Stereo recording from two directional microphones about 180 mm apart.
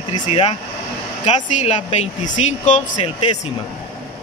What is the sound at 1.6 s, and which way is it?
Speech, 40° left (ahead or behind).